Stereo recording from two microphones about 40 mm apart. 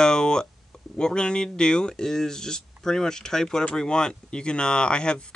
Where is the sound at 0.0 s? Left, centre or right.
Left.